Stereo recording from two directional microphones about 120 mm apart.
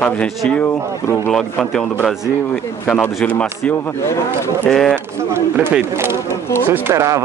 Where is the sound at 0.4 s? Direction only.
10° left (ahead or behind).